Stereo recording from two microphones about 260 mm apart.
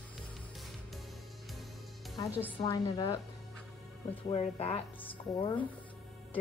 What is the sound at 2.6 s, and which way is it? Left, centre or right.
Speech, centre.